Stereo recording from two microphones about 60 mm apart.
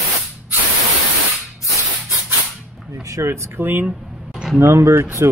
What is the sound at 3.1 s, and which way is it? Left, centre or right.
Speech, right.